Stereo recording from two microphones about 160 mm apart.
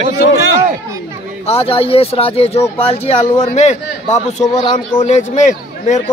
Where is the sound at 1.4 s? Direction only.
35° left (ahead or behind).